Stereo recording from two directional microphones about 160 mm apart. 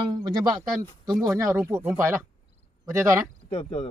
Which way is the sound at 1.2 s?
15° right (ahead or behind).